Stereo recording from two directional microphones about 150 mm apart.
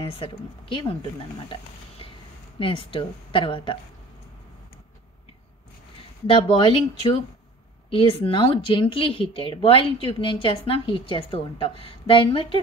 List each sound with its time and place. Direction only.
0.0 s speech: 35° left (ahead or behind)
1.5 s a sound: 35° left (ahead or behind)
2.6 s speech: 35° left (ahead or behind)
6.2 s speech: 35° left (ahead or behind)